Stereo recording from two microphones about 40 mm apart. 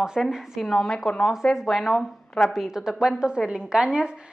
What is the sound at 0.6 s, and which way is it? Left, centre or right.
Speech, centre.